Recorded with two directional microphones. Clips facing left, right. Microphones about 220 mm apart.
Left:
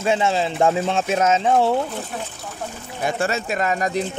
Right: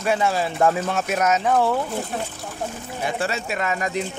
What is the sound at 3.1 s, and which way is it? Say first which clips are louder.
Speech: left 4 dB; 45° left (ahead or behind).